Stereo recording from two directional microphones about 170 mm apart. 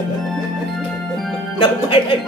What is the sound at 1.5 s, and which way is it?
Speech, 30° left (ahead or behind).